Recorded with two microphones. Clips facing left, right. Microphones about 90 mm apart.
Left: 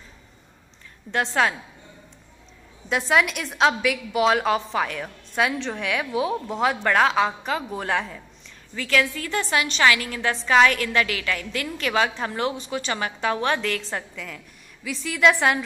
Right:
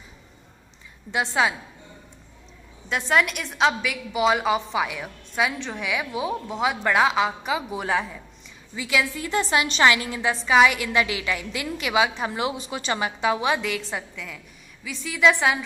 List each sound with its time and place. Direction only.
1.1 s a woman's voice: 5° right (ahead or behind)
2.9 s a woman's voice: centre (ahead or behind); by 10.3 s 20° right (ahead or behind)
10.3 s a woman's voice: 5° right (ahead or behind)